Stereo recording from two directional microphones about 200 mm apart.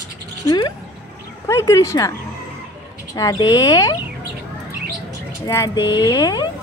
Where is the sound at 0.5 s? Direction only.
20° left (ahead or behind).